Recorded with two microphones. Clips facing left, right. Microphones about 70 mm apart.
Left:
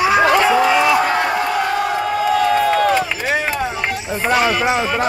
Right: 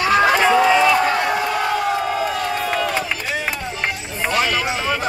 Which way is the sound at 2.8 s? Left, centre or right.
Left.